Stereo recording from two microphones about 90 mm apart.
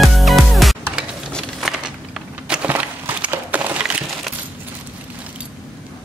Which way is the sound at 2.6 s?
20° right (ahead or behind).